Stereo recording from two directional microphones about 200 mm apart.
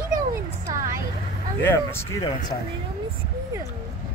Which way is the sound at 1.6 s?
10° left (ahead or behind).